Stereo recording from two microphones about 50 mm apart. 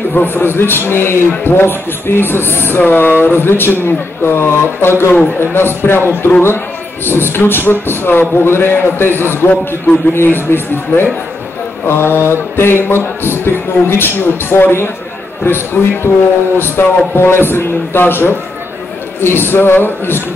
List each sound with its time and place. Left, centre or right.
0.1 s a man's voice: left